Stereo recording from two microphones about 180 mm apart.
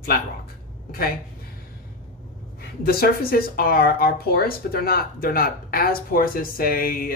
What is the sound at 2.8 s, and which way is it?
Speech, 55° left (ahead or behind).